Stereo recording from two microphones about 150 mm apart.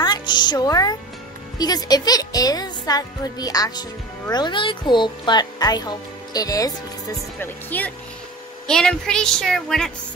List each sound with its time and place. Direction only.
0.0 s speech: 30° left (ahead or behind)
7.3 s a woman's voice: 15° left (ahead or behind)